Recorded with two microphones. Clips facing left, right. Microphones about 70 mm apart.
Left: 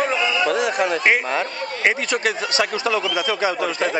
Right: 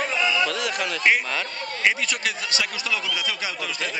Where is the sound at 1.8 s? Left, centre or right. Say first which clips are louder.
Left 4 dB; left.